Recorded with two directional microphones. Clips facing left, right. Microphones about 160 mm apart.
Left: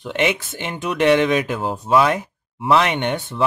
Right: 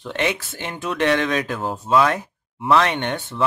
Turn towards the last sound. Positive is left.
turn(degrees=15)  # may be behind; listen again after turning